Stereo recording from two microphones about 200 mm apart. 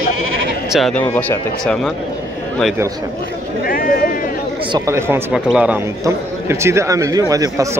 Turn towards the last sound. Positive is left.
turn(degrees=-15)  # may be behind; listen again after turning